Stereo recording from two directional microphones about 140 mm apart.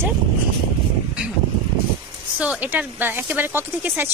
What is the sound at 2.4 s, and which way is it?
A woman's voice, 10° right (ahead or behind).